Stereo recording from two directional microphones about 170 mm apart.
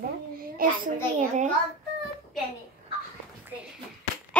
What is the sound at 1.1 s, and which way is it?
Speech, 45° right (ahead or behind).